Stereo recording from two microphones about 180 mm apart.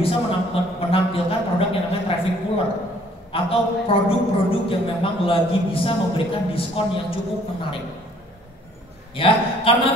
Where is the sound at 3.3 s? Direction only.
30° left (ahead or behind).